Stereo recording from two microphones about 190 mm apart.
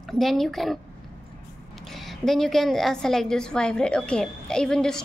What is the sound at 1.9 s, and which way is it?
A woman's voice, centre (ahead or behind).